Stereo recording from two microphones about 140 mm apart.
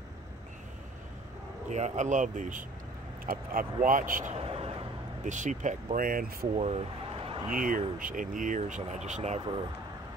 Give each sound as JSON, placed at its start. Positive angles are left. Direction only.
{"t": 1.7, "sound": "speech", "side_deg": -55}
{"t": 3.3, "sound": "speech", "side_deg": -80}
{"t": 4.4, "sound": "a sound", "side_deg": -45}
{"t": 5.2, "sound": "speech", "side_deg": -60}
{"t": 6.5, "sound": "a sound", "side_deg": -45}
{"t": 7.5, "sound": "speech", "side_deg": -75}